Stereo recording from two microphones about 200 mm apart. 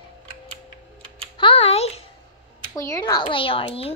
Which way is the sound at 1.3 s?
25° left (ahead or behind).